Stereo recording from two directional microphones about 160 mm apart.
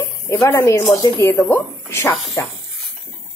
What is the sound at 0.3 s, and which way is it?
A woman's voice, 15° left (ahead or behind).